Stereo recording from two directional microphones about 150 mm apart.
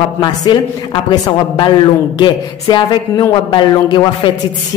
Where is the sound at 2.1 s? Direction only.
30° left (ahead or behind).